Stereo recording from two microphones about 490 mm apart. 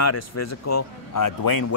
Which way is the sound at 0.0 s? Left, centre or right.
Left.